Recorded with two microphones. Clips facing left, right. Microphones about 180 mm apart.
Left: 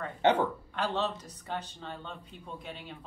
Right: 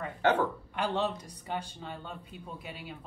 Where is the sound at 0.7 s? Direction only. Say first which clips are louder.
Right 1 dB; 15° right (ahead or behind).